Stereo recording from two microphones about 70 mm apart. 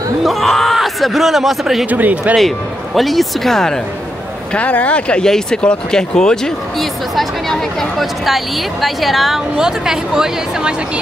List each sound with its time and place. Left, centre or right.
0.2 s a sound: centre
1.9 s speech: right
2.3 s a man's voice: centre
4.6 s a woman's voice: left; by 10.7 s centre